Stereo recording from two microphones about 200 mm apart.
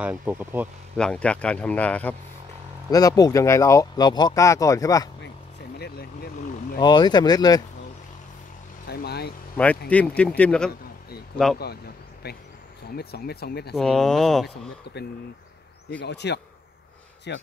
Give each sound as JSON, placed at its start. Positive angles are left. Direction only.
{"t": 0.0, "sound": "speech", "side_deg": -10}
{"t": 0.9, "sound": "speech", "side_deg": 5}
{"t": 2.9, "sound": "speech", "side_deg": 20}
{"t": 5.8, "sound": "vehicle", "side_deg": 50}
{"t": 6.8, "sound": "speech", "side_deg": 20}
{"t": 8.8, "sound": "speech", "side_deg": 55}
{"t": 9.8, "sound": "speech", "side_deg": 5}
{"t": 11.6, "sound": "speech", "side_deg": 55}
{"t": 13.7, "sound": "speech", "side_deg": 0}
{"t": 16.0, "sound": "speech", "side_deg": 60}